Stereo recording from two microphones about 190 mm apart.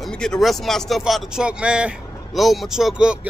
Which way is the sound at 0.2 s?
Centre (ahead or behind).